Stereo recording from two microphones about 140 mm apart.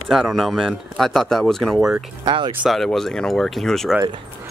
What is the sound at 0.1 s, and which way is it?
Speech, centre (ahead or behind).